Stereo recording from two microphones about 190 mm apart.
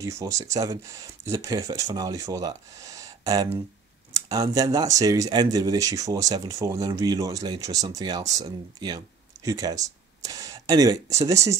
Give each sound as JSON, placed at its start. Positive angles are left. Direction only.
{"t": 0.0, "sound": "speech", "side_deg": -15}